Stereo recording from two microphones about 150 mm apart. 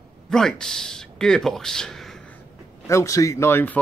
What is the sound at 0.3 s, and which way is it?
Speech, 5° left (ahead or behind).